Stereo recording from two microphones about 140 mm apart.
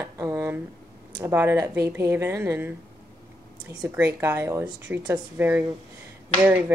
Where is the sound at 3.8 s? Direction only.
15° right (ahead or behind).